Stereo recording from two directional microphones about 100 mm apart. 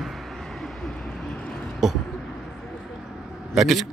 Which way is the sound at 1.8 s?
5° right (ahead or behind).